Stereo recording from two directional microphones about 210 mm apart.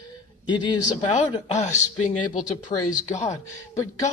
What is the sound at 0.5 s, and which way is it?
Speech, 20° left (ahead or behind).